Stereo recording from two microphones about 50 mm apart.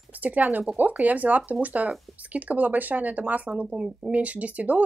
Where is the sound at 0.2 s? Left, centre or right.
Right.